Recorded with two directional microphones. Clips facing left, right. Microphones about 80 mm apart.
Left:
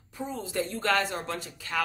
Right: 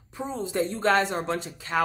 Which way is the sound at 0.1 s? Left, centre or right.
Right.